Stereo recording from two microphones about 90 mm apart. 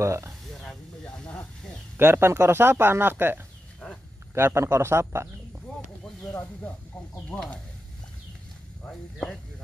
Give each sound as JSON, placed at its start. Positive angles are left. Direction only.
{"t": 0.0, "sound": "speech", "side_deg": -30}
{"t": 0.5, "sound": "snake", "side_deg": 5}
{"t": 2.0, "sound": "speech", "side_deg": -25}
{"t": 6.2, "sound": "speech", "side_deg": 15}
{"t": 8.8, "sound": "speech", "side_deg": 10}